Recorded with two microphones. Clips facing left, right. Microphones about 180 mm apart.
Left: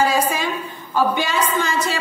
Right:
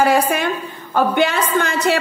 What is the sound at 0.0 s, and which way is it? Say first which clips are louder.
A woman's voice: right 3 dB; 60° right (ahead or behind).